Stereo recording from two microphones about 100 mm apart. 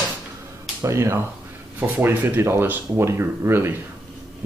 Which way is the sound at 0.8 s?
30° right (ahead or behind).